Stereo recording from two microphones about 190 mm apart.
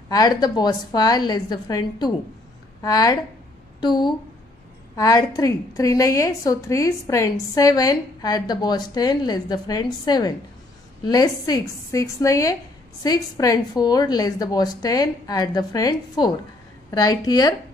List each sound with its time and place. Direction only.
0.1 s a woman's voice: 20° left (ahead or behind)